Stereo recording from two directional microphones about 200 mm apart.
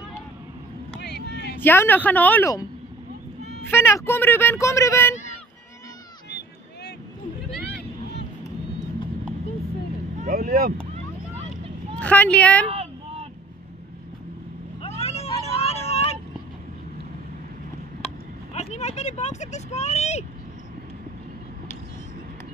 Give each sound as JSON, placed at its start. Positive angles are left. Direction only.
{"t": 1.2, "sound": "a sound", "side_deg": -55}
{"t": 1.6, "sound": "speech", "side_deg": 10}
{"t": 3.7, "sound": "speech", "side_deg": 10}
{"t": 10.2, "sound": "speech", "side_deg": -50}
{"t": 12.0, "sound": "speech", "side_deg": 5}
{"t": 14.8, "sound": "vehicle", "side_deg": 30}
{"t": 18.5, "sound": "vehicle", "side_deg": 35}